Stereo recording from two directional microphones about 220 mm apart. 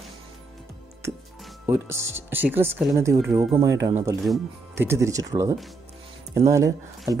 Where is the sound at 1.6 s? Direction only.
10° right (ahead or behind).